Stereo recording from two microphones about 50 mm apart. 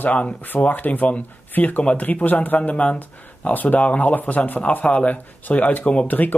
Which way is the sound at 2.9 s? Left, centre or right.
Left.